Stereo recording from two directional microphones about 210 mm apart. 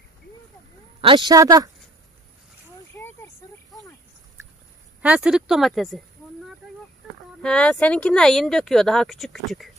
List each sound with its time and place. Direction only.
1.0 s a woman's voice: 20° right (ahead or behind)
5.0 s speech: 5° right (ahead or behind)